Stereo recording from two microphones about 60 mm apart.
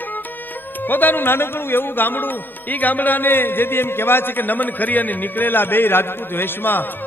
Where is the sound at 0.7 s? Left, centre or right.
Left.